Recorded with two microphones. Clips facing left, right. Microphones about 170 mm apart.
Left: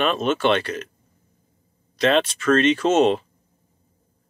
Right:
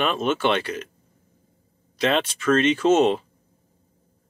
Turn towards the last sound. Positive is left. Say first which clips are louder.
# even
turn(degrees=-10)  # may be behind; listen again after turning